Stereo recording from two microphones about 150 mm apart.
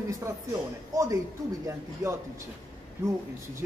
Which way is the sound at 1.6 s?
20° right (ahead or behind).